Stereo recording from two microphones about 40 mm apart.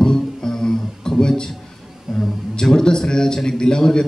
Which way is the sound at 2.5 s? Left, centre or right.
Centre.